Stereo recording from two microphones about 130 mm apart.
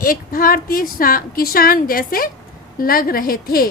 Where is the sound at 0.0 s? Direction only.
90° left.